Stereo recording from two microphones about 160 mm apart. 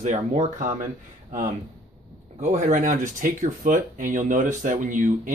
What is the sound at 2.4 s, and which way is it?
Speech, 50° right (ahead or behind).